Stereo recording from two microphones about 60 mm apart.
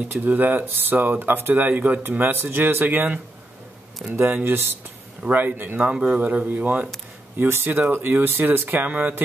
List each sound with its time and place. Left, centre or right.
0.1 s speech: right
5.9 s speech: right
7.3 s speech: right